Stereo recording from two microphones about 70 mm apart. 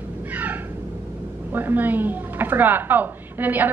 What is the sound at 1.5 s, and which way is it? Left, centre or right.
Speech, right.